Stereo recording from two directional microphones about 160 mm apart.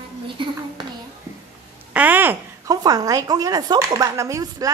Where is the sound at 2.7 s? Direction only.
25° right (ahead or behind).